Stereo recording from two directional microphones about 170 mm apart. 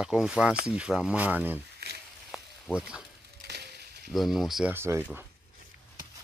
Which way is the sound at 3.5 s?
80° right.